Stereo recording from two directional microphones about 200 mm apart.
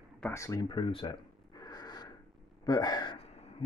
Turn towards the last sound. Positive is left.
turn(degrees=30)  # may be behind; listen again after turning